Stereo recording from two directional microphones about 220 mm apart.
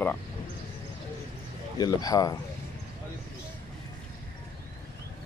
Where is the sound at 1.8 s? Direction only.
20° left (ahead or behind).